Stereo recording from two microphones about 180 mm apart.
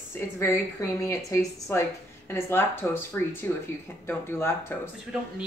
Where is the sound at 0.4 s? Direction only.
15° left (ahead or behind).